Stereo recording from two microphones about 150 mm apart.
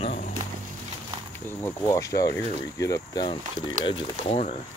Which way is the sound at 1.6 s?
20° left (ahead or behind).